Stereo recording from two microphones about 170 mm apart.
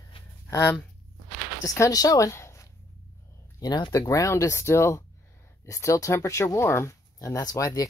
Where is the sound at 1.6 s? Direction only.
20° left (ahead or behind).